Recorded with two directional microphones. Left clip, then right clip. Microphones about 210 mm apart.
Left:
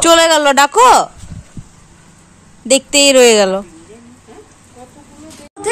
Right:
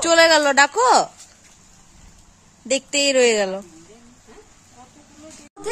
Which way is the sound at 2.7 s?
5° left (ahead or behind).